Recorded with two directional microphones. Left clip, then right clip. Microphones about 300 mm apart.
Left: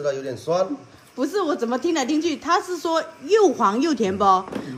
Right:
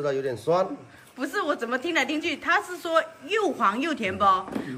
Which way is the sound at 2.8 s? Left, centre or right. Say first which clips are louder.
Left 1 dB; centre.